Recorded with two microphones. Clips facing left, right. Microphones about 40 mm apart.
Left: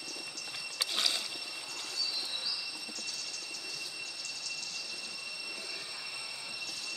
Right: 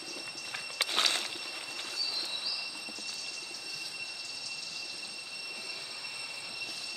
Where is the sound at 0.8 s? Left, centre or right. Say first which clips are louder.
Right 3 dB; right.